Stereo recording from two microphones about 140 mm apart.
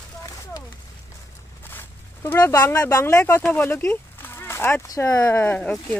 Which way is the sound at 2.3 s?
20° left (ahead or behind).